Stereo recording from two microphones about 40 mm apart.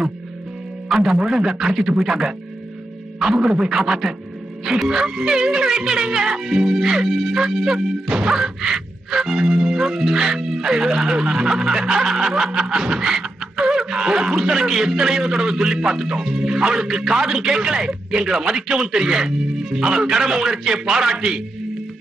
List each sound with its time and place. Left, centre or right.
1.3 s a man's voice: centre
3.3 s a man's voice: right
12.9 s beatboxing: centre
13.7 s a man's voice: centre